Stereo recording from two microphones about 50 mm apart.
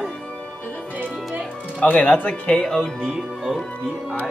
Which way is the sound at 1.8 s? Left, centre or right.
Left.